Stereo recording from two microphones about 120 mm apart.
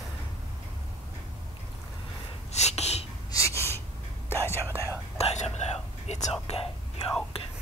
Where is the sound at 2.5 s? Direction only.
65° left (ahead or behind).